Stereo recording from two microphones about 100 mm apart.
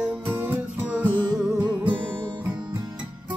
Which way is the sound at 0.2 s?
20° right (ahead or behind).